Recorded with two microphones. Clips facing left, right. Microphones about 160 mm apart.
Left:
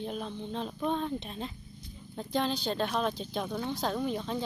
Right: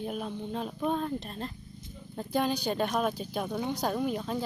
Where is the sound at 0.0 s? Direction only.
5° right (ahead or behind).